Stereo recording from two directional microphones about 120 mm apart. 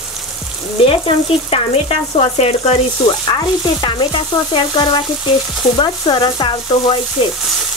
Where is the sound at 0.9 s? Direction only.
50° left (ahead or behind).